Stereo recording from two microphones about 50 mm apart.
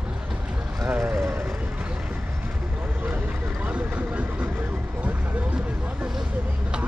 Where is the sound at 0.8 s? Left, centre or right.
Right.